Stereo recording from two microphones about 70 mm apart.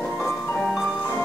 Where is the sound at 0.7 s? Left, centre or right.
Centre.